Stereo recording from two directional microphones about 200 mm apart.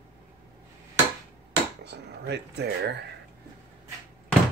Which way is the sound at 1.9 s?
55° right (ahead or behind).